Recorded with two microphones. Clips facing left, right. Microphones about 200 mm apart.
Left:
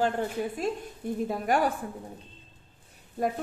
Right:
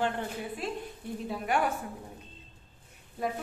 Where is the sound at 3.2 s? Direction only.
45° left (ahead or behind).